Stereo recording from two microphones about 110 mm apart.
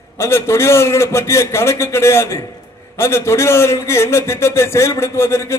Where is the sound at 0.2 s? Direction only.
25° left (ahead or behind).